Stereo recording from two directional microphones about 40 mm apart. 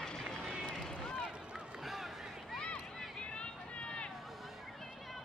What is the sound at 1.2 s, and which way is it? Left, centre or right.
Run, centre.